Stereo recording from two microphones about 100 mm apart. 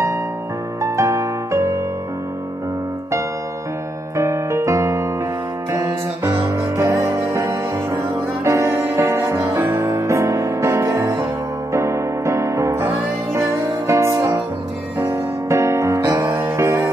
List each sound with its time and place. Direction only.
0.8 s music: 30° right (ahead or behind)
4.2 s music: 30° right (ahead or behind)